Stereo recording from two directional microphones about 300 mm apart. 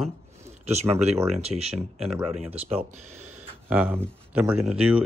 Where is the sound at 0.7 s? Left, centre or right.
Right.